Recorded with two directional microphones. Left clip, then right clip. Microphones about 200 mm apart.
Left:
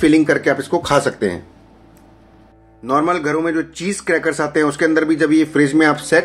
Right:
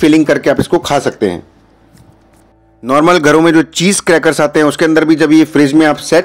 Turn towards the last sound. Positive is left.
turn(degrees=-30)  # may be behind; listen again after turning